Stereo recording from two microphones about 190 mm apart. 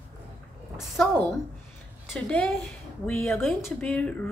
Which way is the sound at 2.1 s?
5° left (ahead or behind).